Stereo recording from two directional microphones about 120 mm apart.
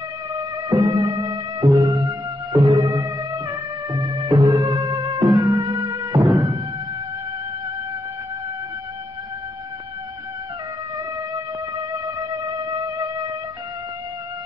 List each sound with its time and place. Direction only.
0.7 s music: 30° right (ahead or behind)
5.6 s music: 45° right (ahead or behind)
6.1 s music: 25° right (ahead or behind)